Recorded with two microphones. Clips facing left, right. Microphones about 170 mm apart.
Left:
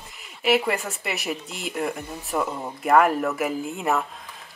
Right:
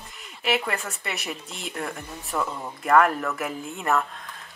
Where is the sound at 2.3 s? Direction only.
20° left (ahead or behind).